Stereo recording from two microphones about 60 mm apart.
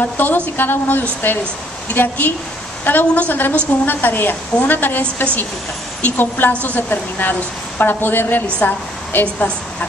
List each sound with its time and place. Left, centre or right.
0.2 s a woman's voice: left